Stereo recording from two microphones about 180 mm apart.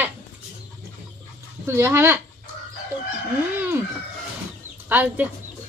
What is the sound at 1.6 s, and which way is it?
Speech, 15° right (ahead or behind).